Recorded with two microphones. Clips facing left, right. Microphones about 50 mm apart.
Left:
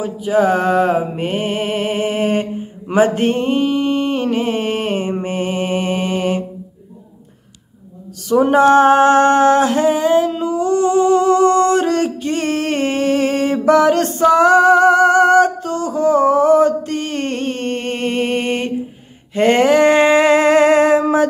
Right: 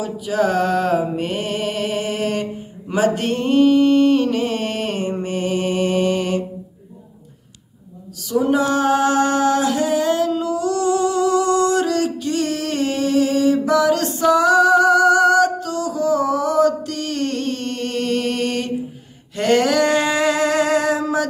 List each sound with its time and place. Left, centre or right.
0.0 s music: left
2.9 s mantra: left
8.3 s a sound: left
19.3 s music: left